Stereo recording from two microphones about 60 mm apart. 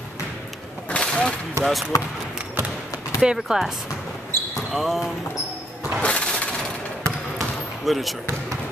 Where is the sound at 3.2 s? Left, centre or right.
Centre.